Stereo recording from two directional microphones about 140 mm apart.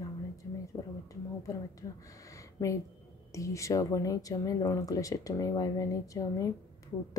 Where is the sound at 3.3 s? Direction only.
20° left (ahead or behind).